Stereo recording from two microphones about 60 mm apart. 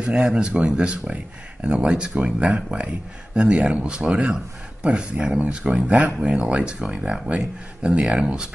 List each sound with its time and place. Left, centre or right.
0.0 s speech: centre